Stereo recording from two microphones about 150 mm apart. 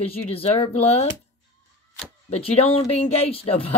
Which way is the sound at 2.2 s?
45° left (ahead or behind).